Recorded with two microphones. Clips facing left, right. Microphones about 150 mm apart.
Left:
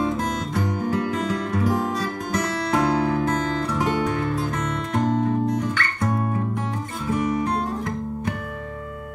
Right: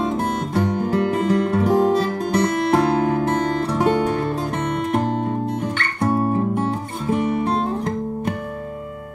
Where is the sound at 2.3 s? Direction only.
25° right (ahead or behind).